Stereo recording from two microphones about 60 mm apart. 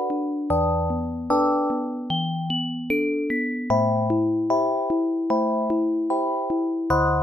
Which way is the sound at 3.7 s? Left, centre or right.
Centre.